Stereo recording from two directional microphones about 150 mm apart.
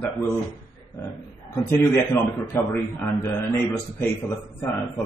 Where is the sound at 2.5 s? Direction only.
15° left (ahead or behind).